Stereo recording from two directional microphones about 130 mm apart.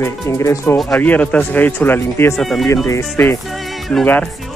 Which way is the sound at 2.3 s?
Centre (ahead or behind).